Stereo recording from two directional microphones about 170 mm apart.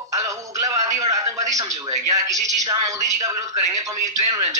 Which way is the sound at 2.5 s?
20° right (ahead or behind).